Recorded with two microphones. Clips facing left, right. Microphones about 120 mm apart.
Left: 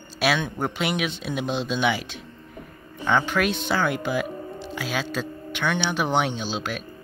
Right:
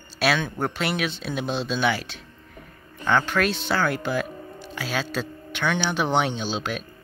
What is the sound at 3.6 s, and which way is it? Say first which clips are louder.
Speech: even; 15° left (ahead or behind).